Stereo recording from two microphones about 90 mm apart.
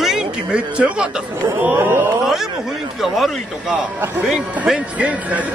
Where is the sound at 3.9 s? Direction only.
20° right (ahead or behind).